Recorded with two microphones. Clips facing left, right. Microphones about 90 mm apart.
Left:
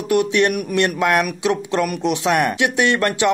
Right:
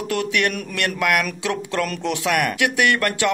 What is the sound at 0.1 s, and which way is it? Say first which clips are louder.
Speech: left 6 dB; 20° left (ahead or behind).